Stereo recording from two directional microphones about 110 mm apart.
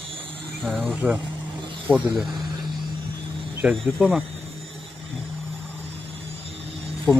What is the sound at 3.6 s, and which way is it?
Speech, centre (ahead or behind).